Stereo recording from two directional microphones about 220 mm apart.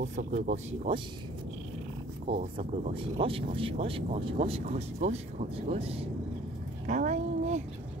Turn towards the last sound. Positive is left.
turn(degrees=-35)  # may be behind; listen again after turning